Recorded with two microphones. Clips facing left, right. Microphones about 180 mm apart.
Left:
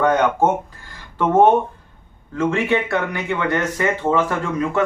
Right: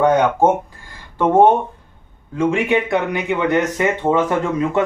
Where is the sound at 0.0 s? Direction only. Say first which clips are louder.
Right 2 dB; 10° right (ahead or behind).